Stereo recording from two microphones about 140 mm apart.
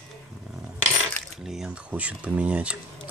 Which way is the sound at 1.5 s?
5° right (ahead or behind).